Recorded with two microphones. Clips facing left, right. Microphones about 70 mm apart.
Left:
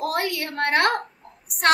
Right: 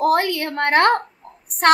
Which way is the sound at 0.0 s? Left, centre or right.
Right.